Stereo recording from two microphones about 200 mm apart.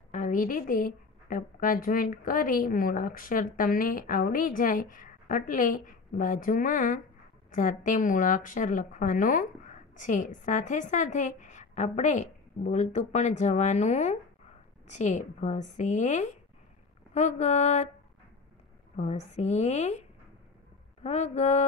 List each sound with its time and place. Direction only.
0.1 s a woman's voice: 40° left (ahead or behind)
18.9 s a woman's voice: 35° left (ahead or behind)